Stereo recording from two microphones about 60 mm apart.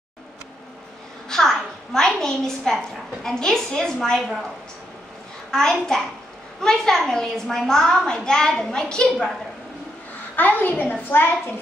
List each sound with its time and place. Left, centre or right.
1.3 s a woman's voice: centre
5.5 s a child's voice: centre
10.3 s a woman's voice: left